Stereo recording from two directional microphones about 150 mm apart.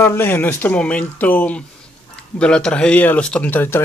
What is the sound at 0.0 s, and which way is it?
A man's voice, 15° left (ahead or behind).